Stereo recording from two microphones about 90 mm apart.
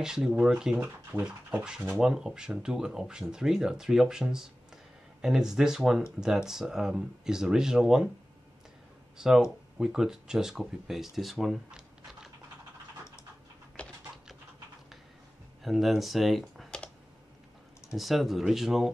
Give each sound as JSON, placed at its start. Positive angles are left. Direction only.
{"t": 0.0, "sound": "speech", "side_deg": -5}
{"t": 0.7, "sound": "speech", "side_deg": -20}
{"t": 1.2, "sound": "speech", "side_deg": -10}
{"t": 9.2, "sound": "speech", "side_deg": -5}
{"t": 13.8, "sound": "typing", "side_deg": 15}
{"t": 15.6, "sound": "speech", "side_deg": 0}
{"t": 17.9, "sound": "speech", "side_deg": 0}